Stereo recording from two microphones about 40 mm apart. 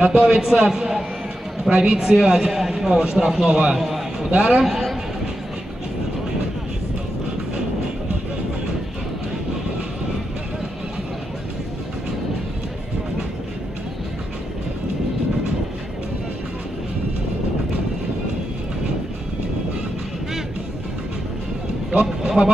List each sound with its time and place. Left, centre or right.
0.0 s a man's voice: right
0.7 s a man's voice: centre
3.4 s a man's voice: right
3.7 s a sound: centre
4.4 s a man's voice: right
4.6 s a man's voice: centre
22.2 s a sound: centre